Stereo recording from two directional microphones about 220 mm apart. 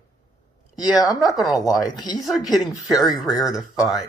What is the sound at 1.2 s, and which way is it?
Speech, centre (ahead or behind).